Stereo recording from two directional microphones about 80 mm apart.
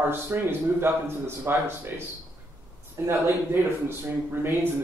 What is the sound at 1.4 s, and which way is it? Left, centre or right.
Speech, right.